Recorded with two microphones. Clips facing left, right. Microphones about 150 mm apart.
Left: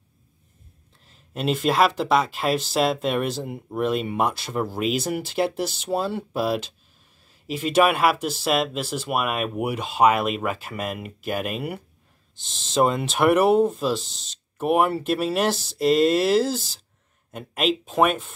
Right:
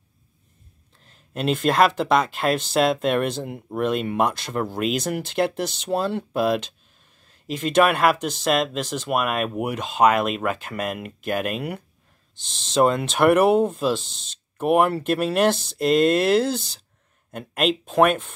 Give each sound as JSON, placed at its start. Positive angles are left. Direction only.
{"t": 1.0, "sound": "speech", "side_deg": 0}